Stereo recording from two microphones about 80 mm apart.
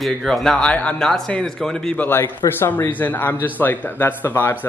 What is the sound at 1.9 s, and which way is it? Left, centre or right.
Speech, left.